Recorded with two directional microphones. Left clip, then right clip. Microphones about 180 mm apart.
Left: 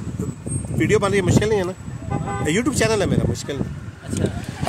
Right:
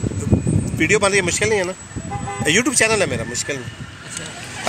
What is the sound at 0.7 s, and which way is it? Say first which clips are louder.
Speech: right 2 dB; 20° left (ahead or behind).